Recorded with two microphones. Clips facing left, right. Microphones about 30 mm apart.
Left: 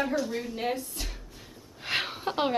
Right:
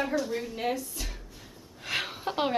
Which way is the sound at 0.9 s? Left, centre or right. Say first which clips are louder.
Even; centre.